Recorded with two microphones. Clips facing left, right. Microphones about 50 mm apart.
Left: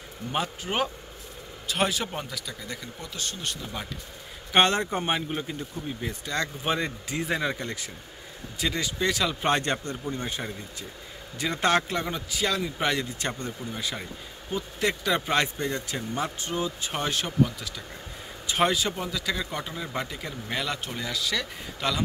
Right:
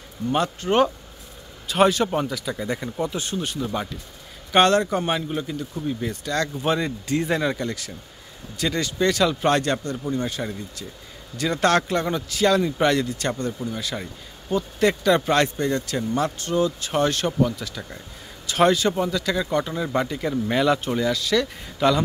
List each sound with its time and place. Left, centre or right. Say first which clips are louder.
0.3 s a man's voice: right 7 dB; centre
2.6 s speech: right 12 dB; right
3.3 s a man's voice: right 8 dB; centre
4.5 s a man's voice: right 5 dB; centre
5.9 s a man's voice: right 7 dB; centre
14.5 s a man's voice: right 7 dB; centre